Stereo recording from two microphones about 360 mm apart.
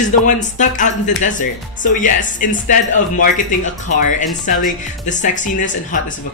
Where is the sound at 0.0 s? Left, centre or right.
Left.